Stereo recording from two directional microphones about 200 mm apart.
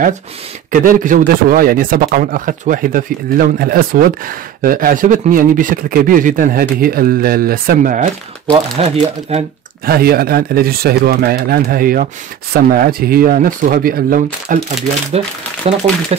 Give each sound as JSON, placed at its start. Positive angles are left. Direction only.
{"t": 0.7, "sound": "speech", "side_deg": -40}
{"t": 8.5, "sound": "speech", "side_deg": -30}
{"t": 9.8, "sound": "speech", "side_deg": -50}
{"t": 15.1, "sound": "speech", "side_deg": -30}